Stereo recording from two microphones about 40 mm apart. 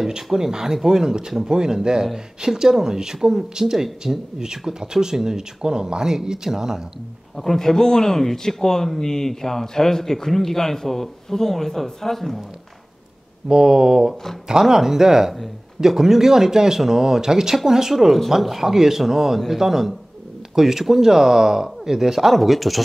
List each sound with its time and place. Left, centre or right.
0.1 s speech: centre
7.3 s speech: centre
13.5 s speech: centre